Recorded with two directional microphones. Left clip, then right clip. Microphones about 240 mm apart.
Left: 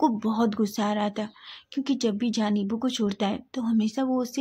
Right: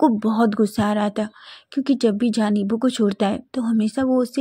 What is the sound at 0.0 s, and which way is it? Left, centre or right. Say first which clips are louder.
Speech: right 6 dB; right.